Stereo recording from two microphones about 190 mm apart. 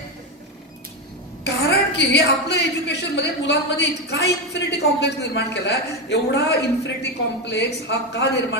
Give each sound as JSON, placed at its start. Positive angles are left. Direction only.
{"t": 1.4, "sound": "a woman's voice", "side_deg": 65}